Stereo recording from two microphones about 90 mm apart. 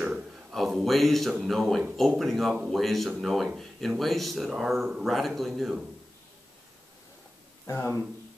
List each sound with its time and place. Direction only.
0.0 s a sound: centre (ahead or behind)
1.4 s speech: centre (ahead or behind)
7.6 s speech: 30° left (ahead or behind)